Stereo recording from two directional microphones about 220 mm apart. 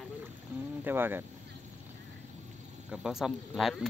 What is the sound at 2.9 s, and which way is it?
Speech, 5° right (ahead or behind).